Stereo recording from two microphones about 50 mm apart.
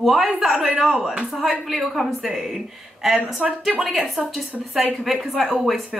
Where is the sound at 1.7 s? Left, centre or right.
Centre.